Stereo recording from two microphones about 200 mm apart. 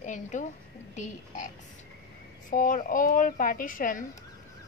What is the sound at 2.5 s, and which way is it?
A woman's voice, 40° left (ahead or behind).